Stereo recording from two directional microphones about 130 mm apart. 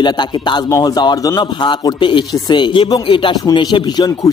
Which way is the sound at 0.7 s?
25° left (ahead or behind).